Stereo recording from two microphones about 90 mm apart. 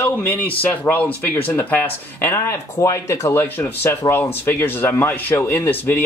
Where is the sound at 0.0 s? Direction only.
20° left (ahead or behind).